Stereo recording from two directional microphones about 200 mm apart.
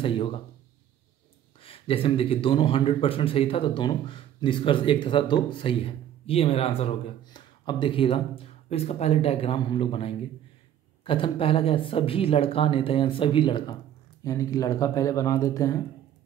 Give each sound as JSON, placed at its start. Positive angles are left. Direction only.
{"t": 0.0, "sound": "speech", "side_deg": 25}
{"t": 1.6, "sound": "speech", "side_deg": 30}